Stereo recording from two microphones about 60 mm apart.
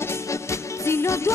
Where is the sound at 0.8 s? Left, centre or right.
Left.